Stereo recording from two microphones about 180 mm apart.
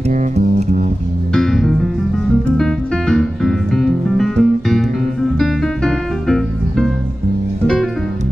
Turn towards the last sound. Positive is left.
turn(degrees=5)  # may be behind; listen again after turning